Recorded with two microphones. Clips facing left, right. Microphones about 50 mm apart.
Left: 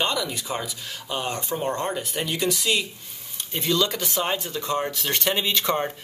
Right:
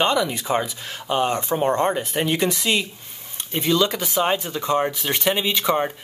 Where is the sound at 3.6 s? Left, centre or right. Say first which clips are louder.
Right 4 dB; centre.